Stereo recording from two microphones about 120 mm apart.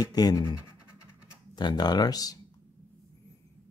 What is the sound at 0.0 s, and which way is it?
Speech, 35° left (ahead or behind).